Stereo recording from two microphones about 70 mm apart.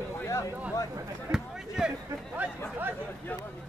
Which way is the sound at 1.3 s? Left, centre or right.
Centre.